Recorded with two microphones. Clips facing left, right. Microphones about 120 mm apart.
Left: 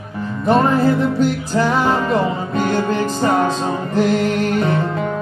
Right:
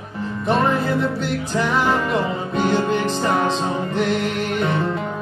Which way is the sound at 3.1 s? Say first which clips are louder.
Left 3 dB; 45° left (ahead or behind).